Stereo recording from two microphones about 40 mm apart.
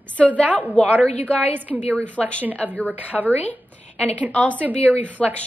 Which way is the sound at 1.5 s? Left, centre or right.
Right.